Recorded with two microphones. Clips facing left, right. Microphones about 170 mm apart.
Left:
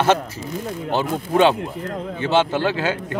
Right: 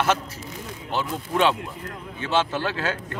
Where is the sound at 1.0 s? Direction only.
55° left (ahead or behind).